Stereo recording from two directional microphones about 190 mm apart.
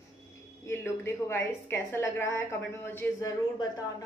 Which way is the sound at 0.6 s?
15° left (ahead or behind).